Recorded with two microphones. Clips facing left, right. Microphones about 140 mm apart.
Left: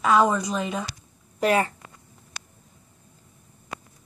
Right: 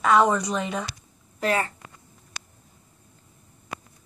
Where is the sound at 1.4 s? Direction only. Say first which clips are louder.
Left 3 dB; 15° left (ahead or behind).